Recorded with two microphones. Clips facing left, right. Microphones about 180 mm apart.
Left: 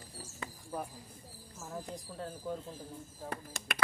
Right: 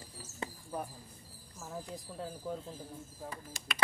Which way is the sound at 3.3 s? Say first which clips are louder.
Left 5 dB; 60° left (ahead or behind).